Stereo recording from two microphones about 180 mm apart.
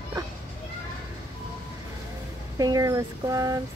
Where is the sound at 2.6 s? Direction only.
20° right (ahead or behind).